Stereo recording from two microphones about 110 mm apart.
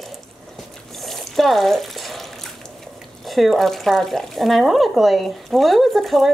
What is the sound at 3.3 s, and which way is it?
Speech, centre (ahead or behind).